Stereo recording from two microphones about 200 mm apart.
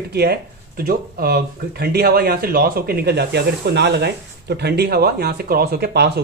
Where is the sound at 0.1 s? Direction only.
50° right (ahead or behind).